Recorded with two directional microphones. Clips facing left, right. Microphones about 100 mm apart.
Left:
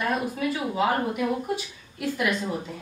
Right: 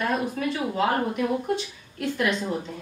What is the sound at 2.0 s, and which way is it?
Speech, 5° left (ahead or behind).